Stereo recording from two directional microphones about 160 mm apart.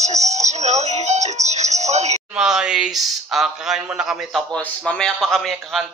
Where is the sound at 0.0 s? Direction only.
45° right (ahead or behind).